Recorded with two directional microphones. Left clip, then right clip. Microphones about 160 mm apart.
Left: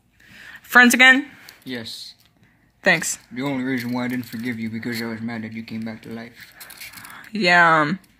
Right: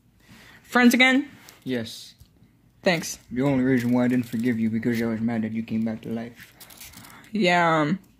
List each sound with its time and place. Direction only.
0.5 s speech: centre (ahead or behind)
1.7 s speech: 70° right (ahead or behind)
2.8 s speech: centre (ahead or behind)
3.3 s speech: 65° right (ahead or behind)
6.6 s a sound: 10° left (ahead or behind)